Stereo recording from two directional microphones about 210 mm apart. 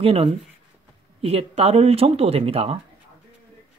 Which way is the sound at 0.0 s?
25° right (ahead or behind).